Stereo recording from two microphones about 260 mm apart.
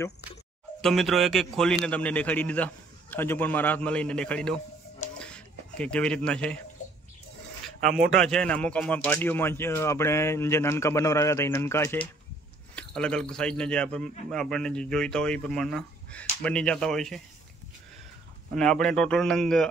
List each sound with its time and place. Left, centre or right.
0.7 s a man's voice: centre
5.2 s a sound: centre
7.8 s speech: right
8.1 s a man's voice: centre
18.5 s a man's voice: centre